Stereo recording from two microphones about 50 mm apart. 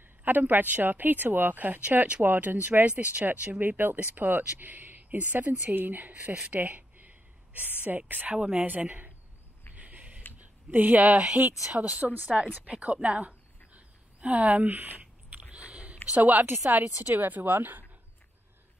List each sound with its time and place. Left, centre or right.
0.2 s a woman's voice: right
6.4 s a sound: right
8.1 s speech: right
8.4 s a woman's voice: centre
8.6 s speech: right
9.8 s a sound: right
10.4 s a woman's voice: right
13.7 s a sound: right
16.1 s speech: right
16.4 s speech: right
16.7 s speech: right